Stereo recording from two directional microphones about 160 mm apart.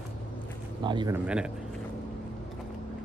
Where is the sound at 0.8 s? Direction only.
30° right (ahead or behind).